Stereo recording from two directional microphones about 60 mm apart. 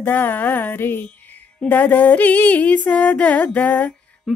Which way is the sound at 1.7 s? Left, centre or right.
Left.